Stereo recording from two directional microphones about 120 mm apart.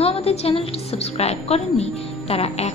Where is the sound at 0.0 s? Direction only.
60° left (ahead or behind).